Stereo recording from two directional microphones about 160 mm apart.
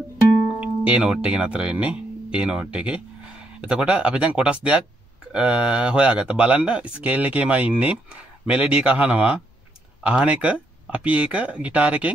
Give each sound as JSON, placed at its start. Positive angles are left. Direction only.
{"t": 0.6, "sound": "speech", "side_deg": -5}